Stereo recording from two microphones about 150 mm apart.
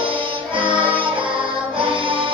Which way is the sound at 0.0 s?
35° right (ahead or behind).